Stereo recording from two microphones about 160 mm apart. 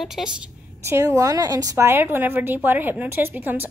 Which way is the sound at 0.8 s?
15° right (ahead or behind).